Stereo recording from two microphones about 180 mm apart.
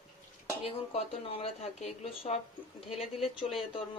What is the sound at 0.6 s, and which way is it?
Speech, 35° left (ahead or behind).